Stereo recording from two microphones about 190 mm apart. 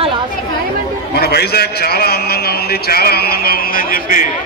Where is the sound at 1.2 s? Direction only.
55° left (ahead or behind).